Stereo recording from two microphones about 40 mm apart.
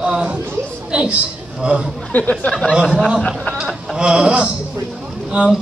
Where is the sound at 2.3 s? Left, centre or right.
Left.